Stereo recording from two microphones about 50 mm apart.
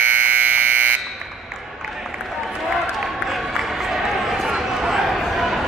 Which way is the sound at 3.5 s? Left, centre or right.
Centre.